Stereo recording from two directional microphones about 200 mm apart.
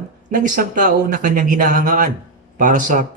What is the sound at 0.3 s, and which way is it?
Speech, 45° right (ahead or behind).